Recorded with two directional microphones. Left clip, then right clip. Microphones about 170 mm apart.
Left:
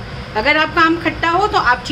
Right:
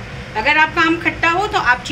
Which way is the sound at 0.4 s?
25° left (ahead or behind).